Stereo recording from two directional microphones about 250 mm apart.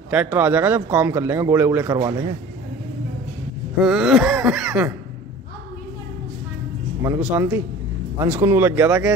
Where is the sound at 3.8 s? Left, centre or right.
Centre.